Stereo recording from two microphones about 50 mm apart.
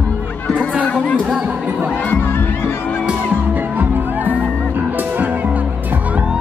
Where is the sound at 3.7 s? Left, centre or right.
Right.